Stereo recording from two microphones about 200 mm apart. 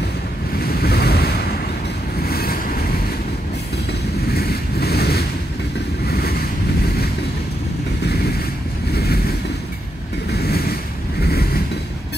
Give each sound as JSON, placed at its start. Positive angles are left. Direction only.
{"t": 0.6, "sound": "waves", "side_deg": 50}
{"t": 2.2, "sound": "vehicle", "side_deg": 50}
{"t": 4.3, "sound": "wind noise", "side_deg": 50}
{"t": 6.0, "sound": "boat", "side_deg": 50}
{"t": 8.0, "sound": "vehicle", "side_deg": 50}
{"t": 10.3, "sound": "boat", "side_deg": 50}
{"t": 11.2, "sound": "vehicle", "side_deg": 50}